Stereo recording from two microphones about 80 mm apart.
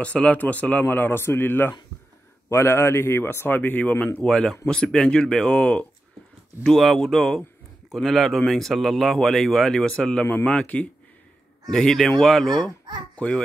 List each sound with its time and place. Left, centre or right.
0.0 s speech: centre
4.2 s speech: centre